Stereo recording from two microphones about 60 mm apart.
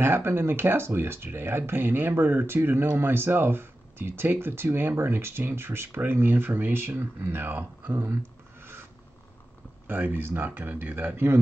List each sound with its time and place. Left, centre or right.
0.0 s speech: right
9.8 s speech: right